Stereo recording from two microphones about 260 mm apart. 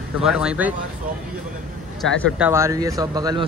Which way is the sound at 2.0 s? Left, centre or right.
Centre.